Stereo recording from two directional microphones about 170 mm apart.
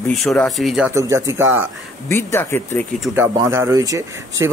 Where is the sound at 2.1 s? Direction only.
15° left (ahead or behind).